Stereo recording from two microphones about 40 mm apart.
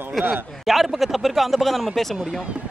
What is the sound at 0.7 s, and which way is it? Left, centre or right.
Speech, centre.